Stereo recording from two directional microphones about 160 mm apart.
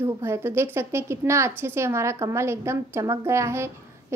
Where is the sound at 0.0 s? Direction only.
15° right (ahead or behind).